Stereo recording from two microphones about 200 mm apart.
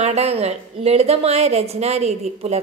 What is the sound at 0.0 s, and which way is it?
A woman's voice, 30° right (ahead or behind).